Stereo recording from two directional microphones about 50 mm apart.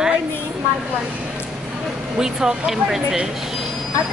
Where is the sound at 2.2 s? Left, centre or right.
Centre.